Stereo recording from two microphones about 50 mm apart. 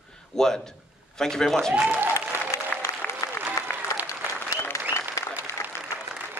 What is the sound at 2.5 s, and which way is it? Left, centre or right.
Applause, left.